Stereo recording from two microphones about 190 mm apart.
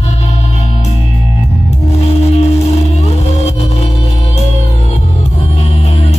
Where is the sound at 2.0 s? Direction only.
35° left (ahead or behind).